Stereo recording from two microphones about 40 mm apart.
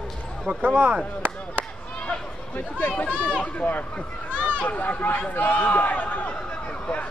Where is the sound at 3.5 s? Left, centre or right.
Left.